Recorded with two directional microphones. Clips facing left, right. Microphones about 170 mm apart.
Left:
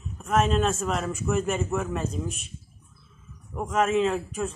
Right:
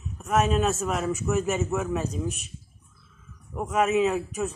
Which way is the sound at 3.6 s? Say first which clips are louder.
Even; 5° right (ahead or behind).